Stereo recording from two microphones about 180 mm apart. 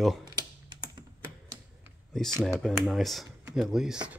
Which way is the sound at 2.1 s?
Centre (ahead or behind).